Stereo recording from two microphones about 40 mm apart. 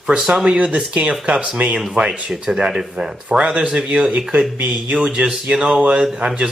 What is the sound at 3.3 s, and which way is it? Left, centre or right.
A man's voice, right.